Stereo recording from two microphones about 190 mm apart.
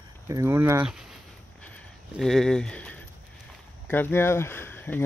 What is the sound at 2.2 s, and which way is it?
Speech, centre (ahead or behind).